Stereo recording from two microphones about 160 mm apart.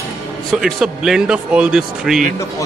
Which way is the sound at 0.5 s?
Centre (ahead or behind).